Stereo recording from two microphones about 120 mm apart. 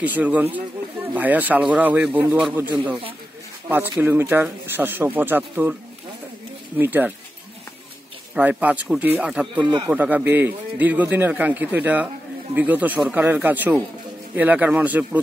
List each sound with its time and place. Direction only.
0.0 s a man's voice: 10° right (ahead or behind)
3.6 s a man's voice: 15° right (ahead or behind)
6.8 s a man's voice: 15° right (ahead or behind)
8.4 s a man's voice: 10° right (ahead or behind)